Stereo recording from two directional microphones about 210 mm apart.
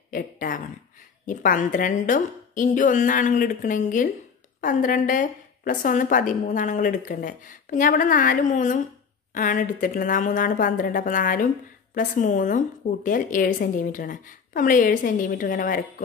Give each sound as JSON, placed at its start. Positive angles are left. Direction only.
{"t": 0.1, "sound": "a woman's voice", "side_deg": 40}